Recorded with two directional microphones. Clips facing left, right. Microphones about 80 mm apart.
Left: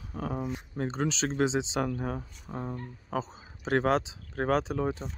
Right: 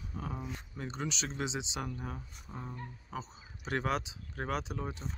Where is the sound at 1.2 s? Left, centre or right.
Left.